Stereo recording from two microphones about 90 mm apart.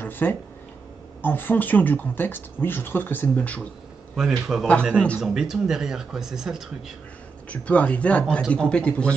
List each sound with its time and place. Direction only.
0.0 s speech: 25° left (ahead or behind)
4.2 s speech: 5° right (ahead or behind)
4.9 s speech: 15° left (ahead or behind)
5.2 s speech: 5° right (ahead or behind)
7.4 s speech: 15° left (ahead or behind)